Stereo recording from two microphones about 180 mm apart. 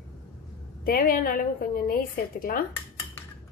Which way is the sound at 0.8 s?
55° left (ahead or behind).